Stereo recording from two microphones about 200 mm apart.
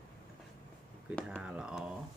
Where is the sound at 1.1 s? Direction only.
Centre (ahead or behind).